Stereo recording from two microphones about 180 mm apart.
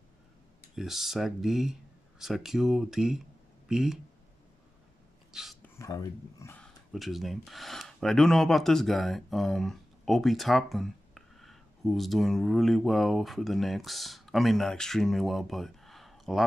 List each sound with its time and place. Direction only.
0.7 s speech: centre (ahead or behind)
5.3 s speech: centre (ahead or behind)
5.8 s speech: 15° left (ahead or behind)
6.6 s speech: centre (ahead or behind)